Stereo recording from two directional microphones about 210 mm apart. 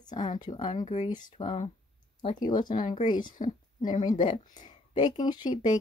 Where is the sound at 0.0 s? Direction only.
20° left (ahead or behind).